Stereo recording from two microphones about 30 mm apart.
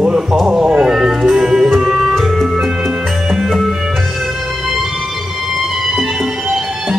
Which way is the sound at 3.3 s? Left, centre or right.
Centre.